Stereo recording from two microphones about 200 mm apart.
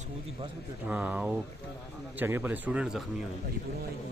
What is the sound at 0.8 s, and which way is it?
Speech, 10° right (ahead or behind).